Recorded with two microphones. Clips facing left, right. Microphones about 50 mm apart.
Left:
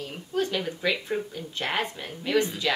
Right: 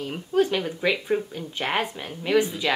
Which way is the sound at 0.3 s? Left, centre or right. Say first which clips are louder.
Right 5 dB; centre.